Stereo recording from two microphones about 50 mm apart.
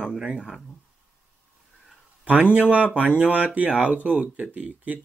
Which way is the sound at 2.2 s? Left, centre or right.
Right.